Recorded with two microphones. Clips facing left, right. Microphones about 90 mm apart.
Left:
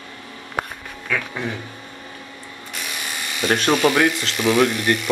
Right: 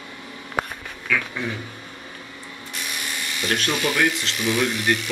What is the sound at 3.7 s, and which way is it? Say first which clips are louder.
Speech: left 5 dB; 75° left (ahead or behind).